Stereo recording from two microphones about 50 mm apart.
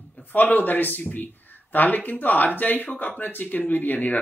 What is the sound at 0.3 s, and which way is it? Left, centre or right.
Speech, left.